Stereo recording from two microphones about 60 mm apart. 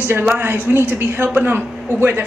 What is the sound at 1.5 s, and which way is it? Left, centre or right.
Speech, right.